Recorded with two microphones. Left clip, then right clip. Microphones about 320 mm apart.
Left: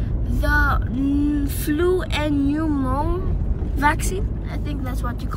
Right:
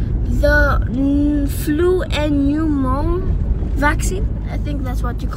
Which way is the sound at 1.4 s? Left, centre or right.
Centre.